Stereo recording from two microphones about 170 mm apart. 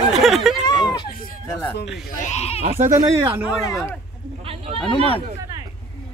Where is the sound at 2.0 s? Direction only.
50° left (ahead or behind).